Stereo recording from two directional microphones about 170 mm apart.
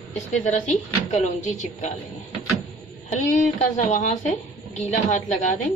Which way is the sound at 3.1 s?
45° left (ahead or behind).